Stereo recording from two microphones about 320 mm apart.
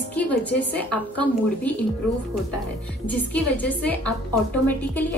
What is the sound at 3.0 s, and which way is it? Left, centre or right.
A woman's voice, centre.